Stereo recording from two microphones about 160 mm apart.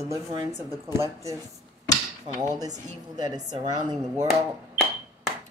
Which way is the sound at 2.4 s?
25° right (ahead or behind).